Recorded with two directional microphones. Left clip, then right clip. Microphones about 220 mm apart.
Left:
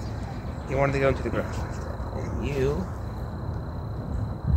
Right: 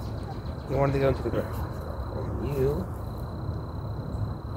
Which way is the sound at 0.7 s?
15° right (ahead or behind).